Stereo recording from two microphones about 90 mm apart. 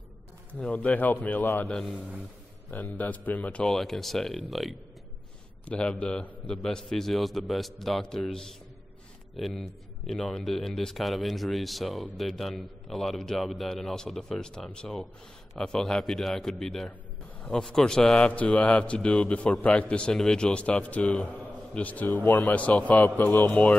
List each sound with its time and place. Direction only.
0.6 s a man's voice: 15° left (ahead or behind)
1.7 s a man's voice: 5° left (ahead or behind)
2.0 s a man's voice: 15° right (ahead or behind)
2.7 s a man's voice: 20° left (ahead or behind)
3.6 s a man's voice: 5° left (ahead or behind)
5.7 s a man's voice: 15° left (ahead or behind)